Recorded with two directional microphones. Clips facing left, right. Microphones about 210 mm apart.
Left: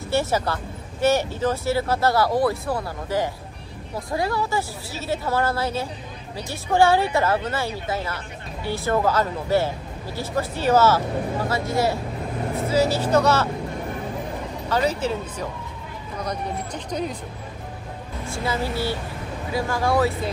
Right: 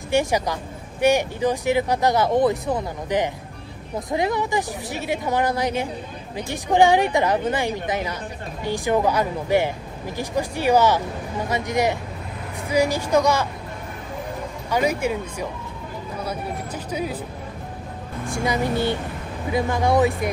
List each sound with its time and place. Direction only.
0.1 s speech: 15° right (ahead or behind)
14.7 s speech: 10° right (ahead or behind)
18.3 s speech: 15° right (ahead or behind)